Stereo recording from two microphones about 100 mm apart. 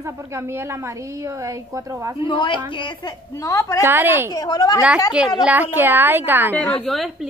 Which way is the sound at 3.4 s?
30° left (ahead or behind).